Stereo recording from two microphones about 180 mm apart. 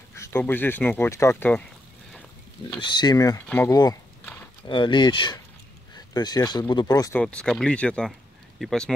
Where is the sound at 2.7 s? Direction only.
25° left (ahead or behind).